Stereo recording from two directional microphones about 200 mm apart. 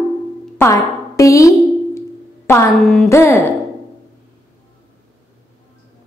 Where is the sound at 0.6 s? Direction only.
15° left (ahead or behind).